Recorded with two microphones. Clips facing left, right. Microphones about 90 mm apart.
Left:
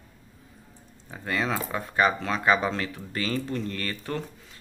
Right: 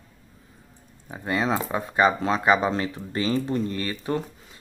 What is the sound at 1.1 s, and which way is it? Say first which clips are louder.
Speech: right 4 dB; 20° right (ahead or behind).